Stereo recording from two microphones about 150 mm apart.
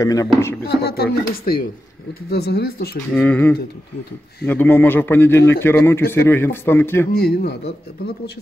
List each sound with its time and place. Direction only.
0.0 s speech: 25° left (ahead or behind)
0.7 s speech: 90° left
3.2 s a man's voice: 10° left (ahead or behind)
7.2 s speech: 90° left